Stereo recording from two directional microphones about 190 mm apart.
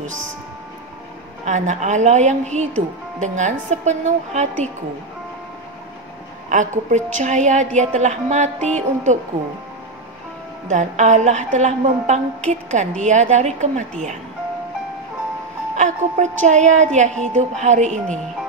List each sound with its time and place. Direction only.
1.4 s a woman's voice: 40° right (ahead or behind)
6.5 s a woman's voice: 40° right (ahead or behind)
10.7 s a woman's voice: 40° right (ahead or behind)
15.7 s a woman's voice: 40° right (ahead or behind)